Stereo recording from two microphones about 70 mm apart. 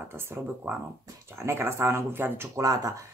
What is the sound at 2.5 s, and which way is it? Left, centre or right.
Speech, right.